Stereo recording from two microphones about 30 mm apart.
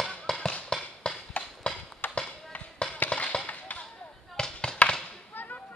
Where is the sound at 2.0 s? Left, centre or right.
Left.